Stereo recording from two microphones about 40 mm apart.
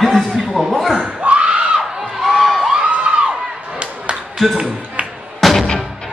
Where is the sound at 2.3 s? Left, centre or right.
Centre.